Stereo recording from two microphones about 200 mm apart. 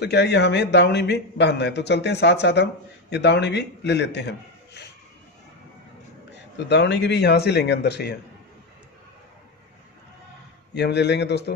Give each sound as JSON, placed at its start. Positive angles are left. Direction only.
{"t": 0.0, "sound": "a man's voice", "side_deg": 55}
{"t": 6.3, "sound": "a man's voice", "side_deg": 60}
{"t": 10.7, "sound": "a man's voice", "side_deg": 55}